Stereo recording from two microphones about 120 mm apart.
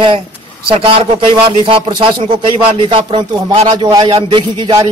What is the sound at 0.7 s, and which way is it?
Speech, 50° right (ahead or behind).